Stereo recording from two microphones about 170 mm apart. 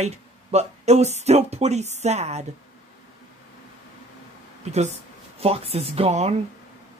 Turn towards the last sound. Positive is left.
turn(degrees=-40)  # may be behind; listen again after turning